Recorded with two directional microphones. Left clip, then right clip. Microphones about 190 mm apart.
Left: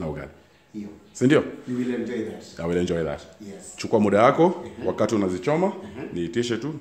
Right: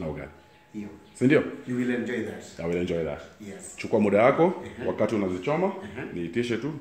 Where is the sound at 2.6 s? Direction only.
15° left (ahead or behind).